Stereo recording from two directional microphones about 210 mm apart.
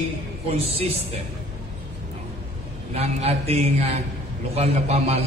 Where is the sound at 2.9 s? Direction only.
30° right (ahead or behind).